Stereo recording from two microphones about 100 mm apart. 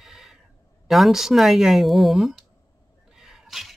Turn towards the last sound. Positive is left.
turn(degrees=0)  # may be behind; listen again after turning